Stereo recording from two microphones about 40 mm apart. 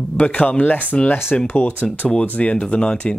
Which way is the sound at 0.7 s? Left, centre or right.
Left.